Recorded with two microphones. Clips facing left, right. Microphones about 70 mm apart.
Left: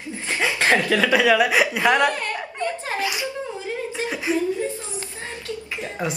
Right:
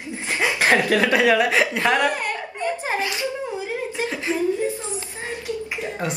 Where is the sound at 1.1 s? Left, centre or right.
Centre.